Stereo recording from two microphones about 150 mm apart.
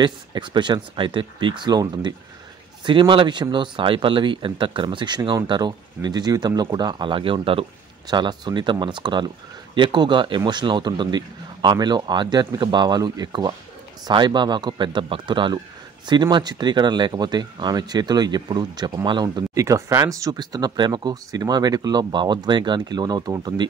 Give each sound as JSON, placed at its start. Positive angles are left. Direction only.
{"t": 0.0, "sound": "speech", "side_deg": -30}